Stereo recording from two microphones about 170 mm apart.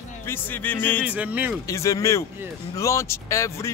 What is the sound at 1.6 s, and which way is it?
Speech, 20° left (ahead or behind).